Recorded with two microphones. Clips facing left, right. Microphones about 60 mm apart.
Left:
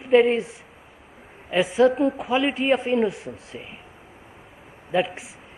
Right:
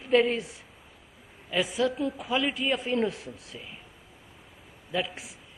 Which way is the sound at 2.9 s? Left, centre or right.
Centre.